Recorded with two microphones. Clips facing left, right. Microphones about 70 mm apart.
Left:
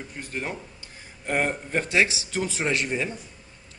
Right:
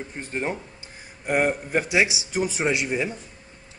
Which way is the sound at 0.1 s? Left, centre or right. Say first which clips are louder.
Right 4 dB; right.